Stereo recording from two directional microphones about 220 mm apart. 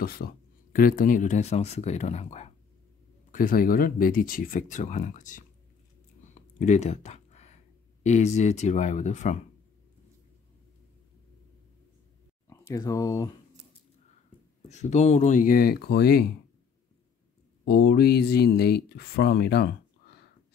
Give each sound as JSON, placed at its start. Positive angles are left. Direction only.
{"t": 0.0, "sound": "speech", "side_deg": 45}
{"t": 6.3, "sound": "a sound", "side_deg": 30}
{"t": 8.0, "sound": "speech", "side_deg": 30}
{"t": 12.4, "sound": "speech", "side_deg": 15}
{"t": 14.7, "sound": "speech", "side_deg": 30}
{"t": 17.6, "sound": "speech", "side_deg": 45}